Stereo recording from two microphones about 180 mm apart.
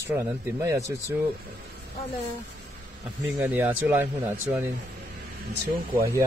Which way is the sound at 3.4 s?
10° right (ahead or behind).